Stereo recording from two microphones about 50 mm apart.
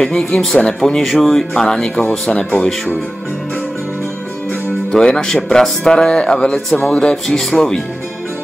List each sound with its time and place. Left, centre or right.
0.4 s speech: centre
1.5 s speech: centre
4.9 s speech: centre
7.2 s speech: centre